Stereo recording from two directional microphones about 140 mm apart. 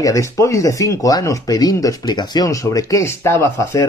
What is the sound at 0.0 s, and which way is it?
Speech, 20° left (ahead or behind).